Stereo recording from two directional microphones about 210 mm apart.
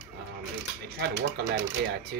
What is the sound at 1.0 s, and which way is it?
Speech, 50° right (ahead or behind).